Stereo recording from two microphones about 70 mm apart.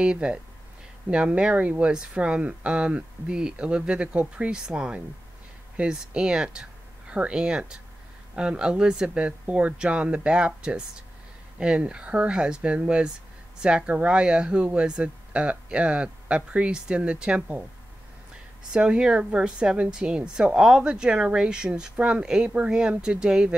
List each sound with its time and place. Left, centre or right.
0.0 s speech: centre
18.7 s speech: centre